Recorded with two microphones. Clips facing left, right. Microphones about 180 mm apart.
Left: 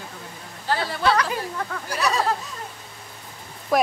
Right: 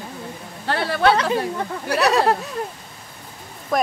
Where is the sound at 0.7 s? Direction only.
65° right (ahead or behind).